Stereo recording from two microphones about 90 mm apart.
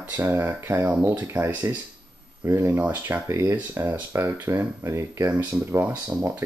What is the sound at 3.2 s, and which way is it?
Speech, 30° right (ahead or behind).